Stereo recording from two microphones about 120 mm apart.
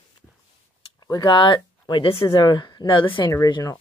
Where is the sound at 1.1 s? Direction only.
35° left (ahead or behind).